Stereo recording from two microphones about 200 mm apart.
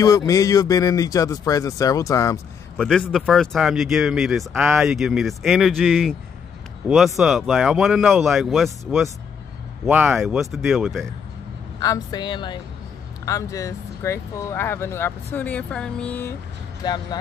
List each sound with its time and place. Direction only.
0.3 s speech: 15° left (ahead or behind)
2.8 s speech: 5° left (ahead or behind)
7.2 s speech: centre (ahead or behind)
11.8 s a woman's voice: 20° left (ahead or behind)
16.8 s a woman's voice: 20° left (ahead or behind)